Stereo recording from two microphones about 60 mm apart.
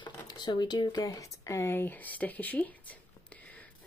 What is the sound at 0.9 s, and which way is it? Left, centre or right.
Speech, left.